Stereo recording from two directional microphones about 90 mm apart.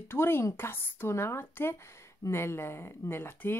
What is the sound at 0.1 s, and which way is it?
Speech, 25° left (ahead or behind).